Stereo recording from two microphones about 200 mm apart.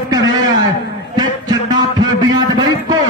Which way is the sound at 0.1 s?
20° right (ahead or behind).